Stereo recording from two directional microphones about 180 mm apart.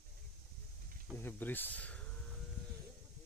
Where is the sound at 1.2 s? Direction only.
10° left (ahead or behind).